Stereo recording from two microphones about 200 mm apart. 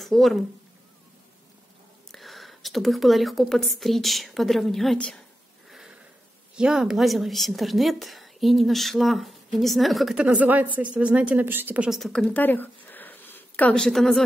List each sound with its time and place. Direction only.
0.0 s speech: centre (ahead or behind)
2.1 s a woman's voice: centre (ahead or behind)
5.7 s a sound: centre (ahead or behind)
6.5 s a woman's voice: 5° right (ahead or behind)